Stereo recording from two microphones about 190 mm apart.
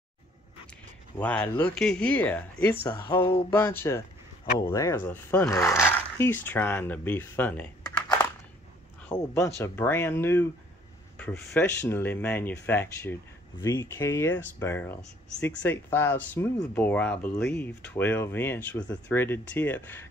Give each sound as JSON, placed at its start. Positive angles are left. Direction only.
{"t": 1.1, "sound": "speech", "side_deg": 10}
{"t": 9.1, "sound": "speech", "side_deg": 15}